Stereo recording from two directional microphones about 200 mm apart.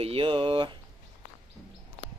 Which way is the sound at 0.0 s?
25° right (ahead or behind).